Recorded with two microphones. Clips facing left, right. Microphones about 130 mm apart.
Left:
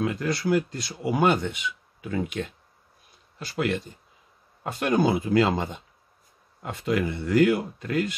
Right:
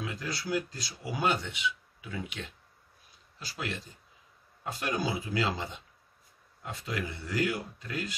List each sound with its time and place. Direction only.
0.0 s speech: 55° left (ahead or behind)
3.3 s speech: 60° left (ahead or behind)